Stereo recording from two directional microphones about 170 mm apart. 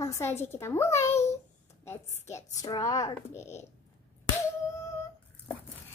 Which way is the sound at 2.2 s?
20° left (ahead or behind).